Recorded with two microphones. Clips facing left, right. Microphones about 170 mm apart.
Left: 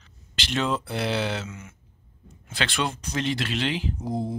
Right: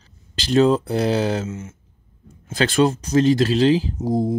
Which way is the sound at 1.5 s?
25° right (ahead or behind).